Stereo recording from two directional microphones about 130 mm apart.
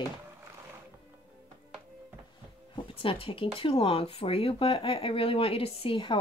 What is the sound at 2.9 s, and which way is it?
Speech, 45° left (ahead or behind).